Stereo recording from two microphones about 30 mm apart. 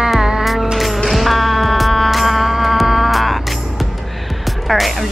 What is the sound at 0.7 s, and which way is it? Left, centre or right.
Music, centre.